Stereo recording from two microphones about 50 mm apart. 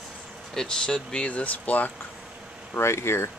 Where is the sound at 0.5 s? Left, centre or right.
Centre.